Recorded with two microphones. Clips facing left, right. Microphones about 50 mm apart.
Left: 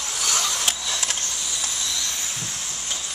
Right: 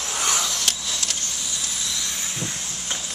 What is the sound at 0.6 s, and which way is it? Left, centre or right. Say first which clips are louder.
Printer: left 1 dB; centre.